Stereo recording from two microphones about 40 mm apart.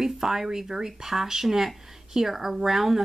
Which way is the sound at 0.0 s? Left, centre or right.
Centre.